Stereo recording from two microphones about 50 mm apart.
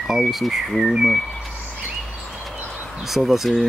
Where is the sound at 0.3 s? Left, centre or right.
Centre.